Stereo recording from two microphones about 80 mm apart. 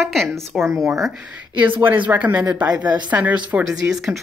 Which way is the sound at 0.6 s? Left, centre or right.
Right.